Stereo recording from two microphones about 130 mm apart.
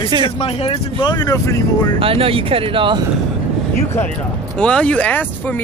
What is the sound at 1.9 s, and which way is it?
Speech, 45° right (ahead or behind).